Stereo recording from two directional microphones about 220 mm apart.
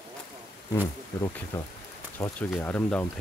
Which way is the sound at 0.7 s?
15° left (ahead or behind).